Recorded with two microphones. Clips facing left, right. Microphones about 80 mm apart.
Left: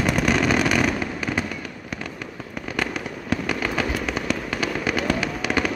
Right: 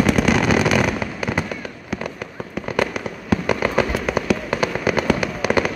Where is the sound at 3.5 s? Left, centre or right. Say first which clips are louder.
Right 7 dB; centre.